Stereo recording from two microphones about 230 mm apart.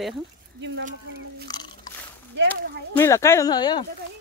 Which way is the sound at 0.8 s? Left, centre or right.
Right.